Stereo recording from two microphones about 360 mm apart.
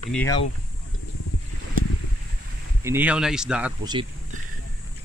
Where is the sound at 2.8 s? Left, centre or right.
Centre.